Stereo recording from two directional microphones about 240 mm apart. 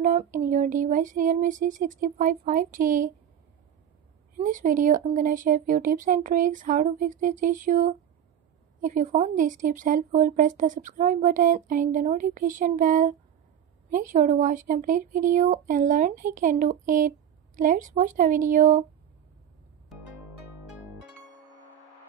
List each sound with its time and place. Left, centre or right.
0.0 s speech: right
4.4 s speech: right